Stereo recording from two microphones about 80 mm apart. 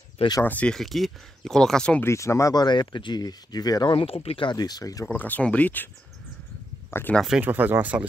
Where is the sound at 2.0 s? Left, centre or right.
Left.